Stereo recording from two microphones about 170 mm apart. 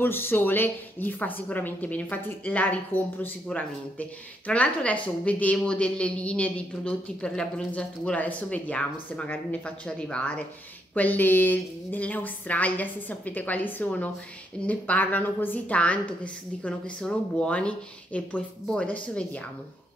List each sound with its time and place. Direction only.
0.0 s a woman's voice: 15° left (ahead or behind)